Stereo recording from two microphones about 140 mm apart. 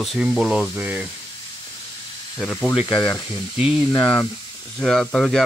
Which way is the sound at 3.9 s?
30° left (ahead or behind).